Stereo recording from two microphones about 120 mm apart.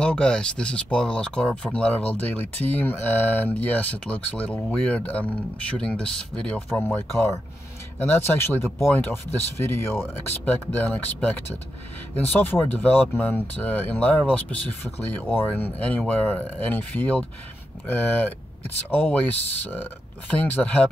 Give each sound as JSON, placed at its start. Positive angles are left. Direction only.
{"t": 0.0, "sound": "speech", "side_deg": 10}
{"t": 6.8, "sound": "speech", "side_deg": 20}